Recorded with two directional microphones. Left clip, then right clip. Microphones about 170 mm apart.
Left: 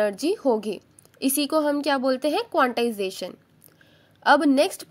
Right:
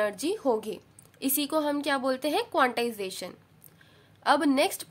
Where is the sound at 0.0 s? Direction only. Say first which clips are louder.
Left 5 dB; 25° left (ahead or behind).